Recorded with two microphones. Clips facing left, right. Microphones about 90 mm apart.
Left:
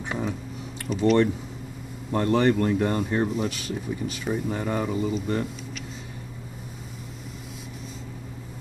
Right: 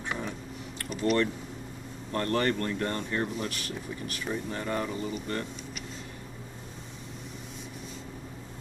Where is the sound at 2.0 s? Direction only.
15° left (ahead or behind).